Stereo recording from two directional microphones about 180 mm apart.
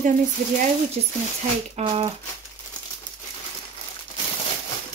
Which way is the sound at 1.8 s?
35° right (ahead or behind).